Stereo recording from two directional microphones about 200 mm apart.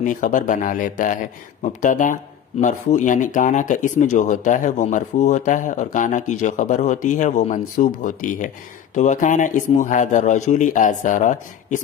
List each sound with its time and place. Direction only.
0.0 s speech: 40° left (ahead or behind)